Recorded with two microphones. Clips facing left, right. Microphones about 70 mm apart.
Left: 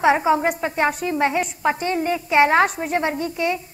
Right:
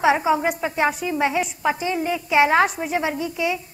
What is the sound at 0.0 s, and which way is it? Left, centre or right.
A woman's voice, centre.